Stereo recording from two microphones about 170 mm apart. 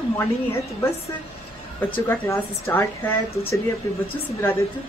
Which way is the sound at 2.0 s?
15° left (ahead or behind).